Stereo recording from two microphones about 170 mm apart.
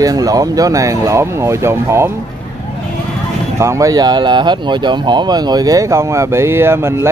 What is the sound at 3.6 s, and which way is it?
Speech, 20° right (ahead or behind).